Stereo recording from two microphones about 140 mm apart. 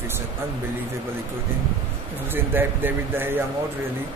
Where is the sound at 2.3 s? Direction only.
15° right (ahead or behind).